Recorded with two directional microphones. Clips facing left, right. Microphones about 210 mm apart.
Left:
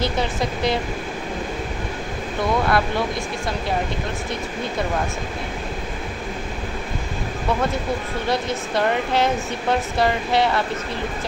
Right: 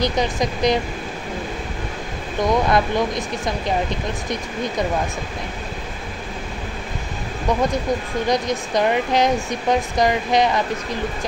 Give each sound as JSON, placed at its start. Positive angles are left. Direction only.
{"t": 0.0, "sound": "speech", "side_deg": -15}
{"t": 2.4, "sound": "speech", "side_deg": -20}
{"t": 8.3, "sound": "speech", "side_deg": -15}